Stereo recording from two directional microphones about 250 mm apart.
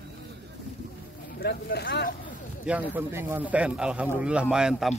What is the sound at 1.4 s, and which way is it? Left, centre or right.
Speech, left.